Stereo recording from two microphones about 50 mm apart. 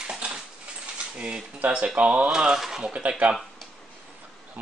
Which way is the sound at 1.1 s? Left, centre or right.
Centre.